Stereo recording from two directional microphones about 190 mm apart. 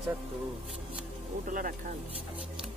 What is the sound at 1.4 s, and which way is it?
Speech, 45° right (ahead or behind).